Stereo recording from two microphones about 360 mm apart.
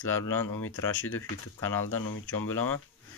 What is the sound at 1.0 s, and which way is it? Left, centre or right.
Speech, left.